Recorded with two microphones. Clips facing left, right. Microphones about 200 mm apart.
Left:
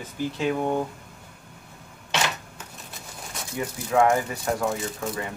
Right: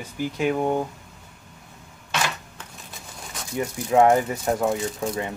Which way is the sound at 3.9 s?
20° right (ahead or behind).